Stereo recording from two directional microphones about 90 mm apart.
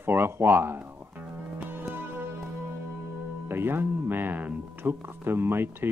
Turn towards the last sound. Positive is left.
turn(degrees=-25)  # may be behind; listen again after turning